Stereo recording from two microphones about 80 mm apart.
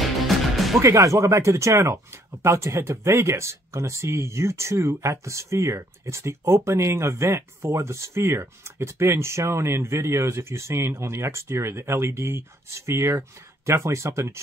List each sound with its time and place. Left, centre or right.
0.0 s music: centre
0.7 s speech: right